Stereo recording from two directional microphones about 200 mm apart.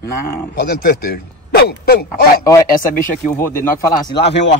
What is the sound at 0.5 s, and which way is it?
Speech, 55° left (ahead or behind).